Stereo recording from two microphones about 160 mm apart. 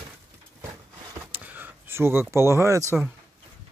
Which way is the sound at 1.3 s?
10° right (ahead or behind).